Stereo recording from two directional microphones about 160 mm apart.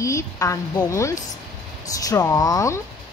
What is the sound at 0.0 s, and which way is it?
A woman's voice, 20° left (ahead or behind).